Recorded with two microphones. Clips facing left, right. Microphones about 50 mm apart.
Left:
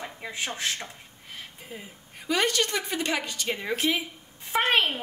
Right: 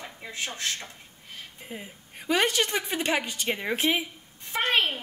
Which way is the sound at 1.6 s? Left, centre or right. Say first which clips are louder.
Right 2 dB; centre.